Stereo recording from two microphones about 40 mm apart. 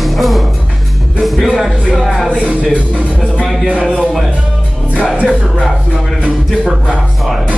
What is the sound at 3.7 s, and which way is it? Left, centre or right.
Music, right.